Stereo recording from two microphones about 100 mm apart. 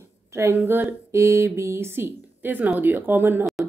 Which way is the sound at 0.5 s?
20° right (ahead or behind).